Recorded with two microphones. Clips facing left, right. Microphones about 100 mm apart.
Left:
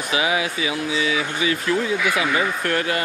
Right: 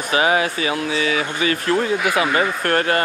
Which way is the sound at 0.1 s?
45° right (ahead or behind).